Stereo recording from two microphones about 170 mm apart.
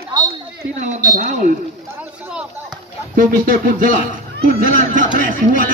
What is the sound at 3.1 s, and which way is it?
Speech, 55° right (ahead or behind).